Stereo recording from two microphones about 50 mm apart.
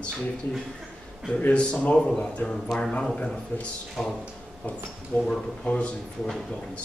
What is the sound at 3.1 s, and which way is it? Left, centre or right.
Speech, left.